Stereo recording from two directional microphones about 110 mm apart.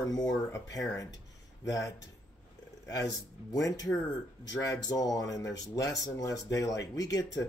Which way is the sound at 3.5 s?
35° left (ahead or behind).